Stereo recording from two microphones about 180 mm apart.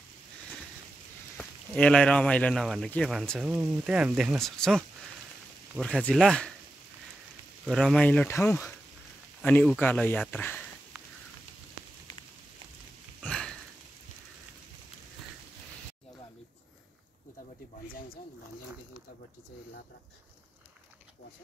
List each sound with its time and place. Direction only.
1.4 s speech: 5° left (ahead or behind)
7.6 s speech: centre (ahead or behind)
13.2 s sniff: 5° left (ahead or behind)
17.8 s speech: 55° left (ahead or behind)